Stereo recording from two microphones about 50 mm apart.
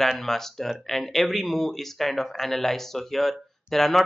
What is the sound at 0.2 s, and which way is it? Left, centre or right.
Speech, centre.